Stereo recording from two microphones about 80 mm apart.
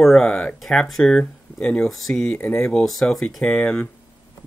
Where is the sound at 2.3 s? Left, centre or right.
Centre.